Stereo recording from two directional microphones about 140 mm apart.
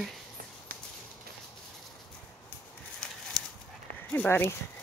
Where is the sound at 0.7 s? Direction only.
90° right.